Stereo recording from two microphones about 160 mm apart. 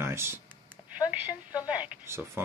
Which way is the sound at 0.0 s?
15° right (ahead or behind).